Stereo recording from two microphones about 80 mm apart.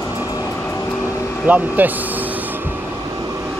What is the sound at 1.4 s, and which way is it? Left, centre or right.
Speech, right.